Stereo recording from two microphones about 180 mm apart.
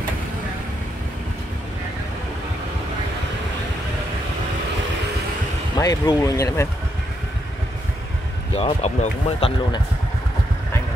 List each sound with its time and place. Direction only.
5.8 s speech: 20° left (ahead or behind)
8.5 s speech: 35° left (ahead or behind)